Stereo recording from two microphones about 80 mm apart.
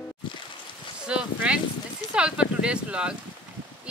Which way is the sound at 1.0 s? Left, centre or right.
Centre.